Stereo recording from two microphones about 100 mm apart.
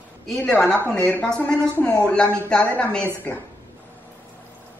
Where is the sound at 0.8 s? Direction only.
20° left (ahead or behind).